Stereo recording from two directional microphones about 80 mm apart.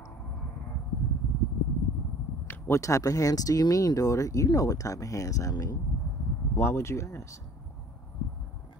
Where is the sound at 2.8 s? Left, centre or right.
Left.